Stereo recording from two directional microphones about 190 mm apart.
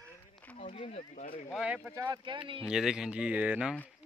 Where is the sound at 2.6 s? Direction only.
5° right (ahead or behind).